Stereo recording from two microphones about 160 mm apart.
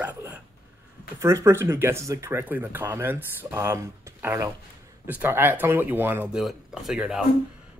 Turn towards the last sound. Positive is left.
turn(degrees=-5)  # may be behind; listen again after turning